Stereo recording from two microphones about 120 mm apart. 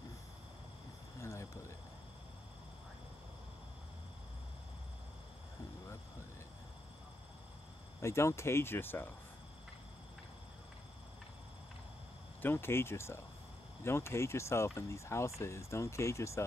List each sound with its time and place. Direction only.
1.2 s cricket: 25° left (ahead or behind)
8.0 s speech: 25° left (ahead or behind)
12.4 s speech: 20° left (ahead or behind)